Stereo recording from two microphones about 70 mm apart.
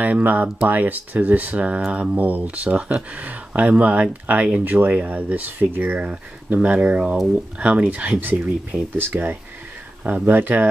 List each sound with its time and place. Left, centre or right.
0.0 s speech: right
8.9 s speech: right